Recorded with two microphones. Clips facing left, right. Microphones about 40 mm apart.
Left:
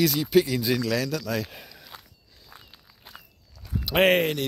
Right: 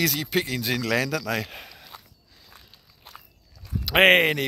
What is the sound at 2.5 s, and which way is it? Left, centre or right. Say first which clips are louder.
Walk: left 3 dB; centre.